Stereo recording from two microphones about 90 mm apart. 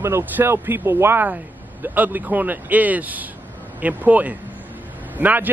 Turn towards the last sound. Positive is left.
turn(degrees=-20)  # may be behind; listen again after turning